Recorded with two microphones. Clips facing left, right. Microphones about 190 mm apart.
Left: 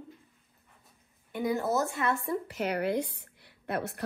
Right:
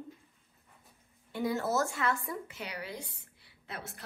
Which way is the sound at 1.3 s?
20° left (ahead or behind).